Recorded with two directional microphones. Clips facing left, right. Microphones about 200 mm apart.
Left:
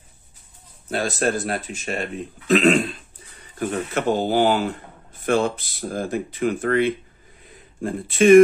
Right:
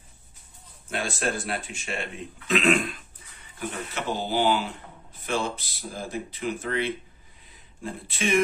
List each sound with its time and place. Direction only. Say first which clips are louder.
0.8 s speech: left 6 dB; 40° left (ahead or behind)
3.5 s speech: left 9 dB; 50° left (ahead or behind)